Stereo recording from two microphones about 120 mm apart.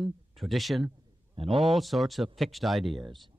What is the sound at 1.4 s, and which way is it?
Speech, 50° right (ahead or behind).